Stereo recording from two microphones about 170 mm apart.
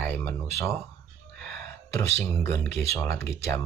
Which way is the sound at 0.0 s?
10° left (ahead or behind).